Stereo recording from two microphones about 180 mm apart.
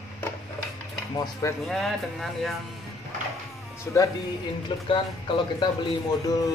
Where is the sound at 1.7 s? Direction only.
Centre (ahead or behind).